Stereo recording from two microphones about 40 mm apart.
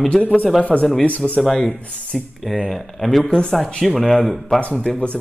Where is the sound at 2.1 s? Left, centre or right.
Centre.